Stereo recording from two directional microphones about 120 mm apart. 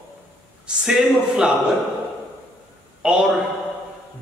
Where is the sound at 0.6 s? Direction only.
5° right (ahead or behind).